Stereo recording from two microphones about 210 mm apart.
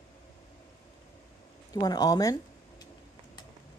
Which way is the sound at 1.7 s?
20° left (ahead or behind).